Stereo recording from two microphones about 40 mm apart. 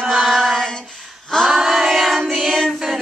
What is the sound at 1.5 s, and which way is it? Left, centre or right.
Music, centre.